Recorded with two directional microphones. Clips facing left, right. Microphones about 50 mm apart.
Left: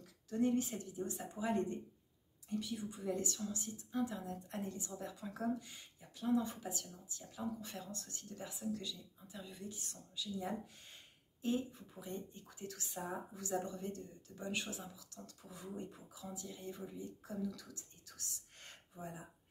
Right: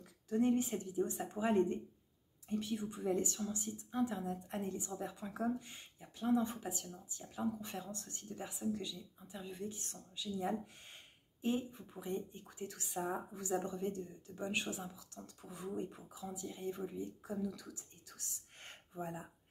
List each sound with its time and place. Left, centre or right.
0.3 s a woman's voice: right